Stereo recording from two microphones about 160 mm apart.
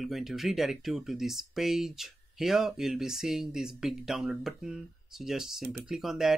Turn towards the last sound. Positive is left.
turn(degrees=0)  # may be behind; listen again after turning